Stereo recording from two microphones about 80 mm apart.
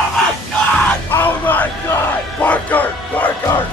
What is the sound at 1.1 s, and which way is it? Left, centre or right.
Yell, left.